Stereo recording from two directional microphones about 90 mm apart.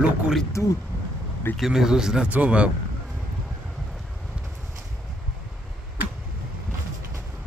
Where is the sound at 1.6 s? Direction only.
5° right (ahead or behind).